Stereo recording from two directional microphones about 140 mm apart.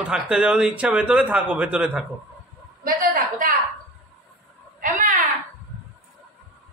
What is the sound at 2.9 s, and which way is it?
Speech, 75° right (ahead or behind).